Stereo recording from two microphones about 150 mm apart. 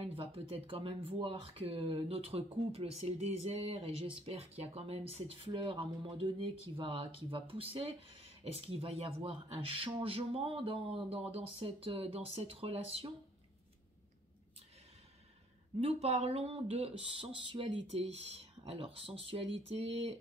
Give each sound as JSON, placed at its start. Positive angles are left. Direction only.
{"t": 0.1, "sound": "speech", "side_deg": -40}
{"t": 15.8, "sound": "speech", "side_deg": -45}